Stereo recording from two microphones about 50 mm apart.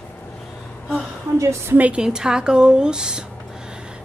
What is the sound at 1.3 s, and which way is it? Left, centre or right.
Speech, right.